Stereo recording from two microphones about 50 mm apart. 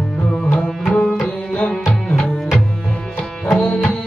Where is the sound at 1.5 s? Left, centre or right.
Centre.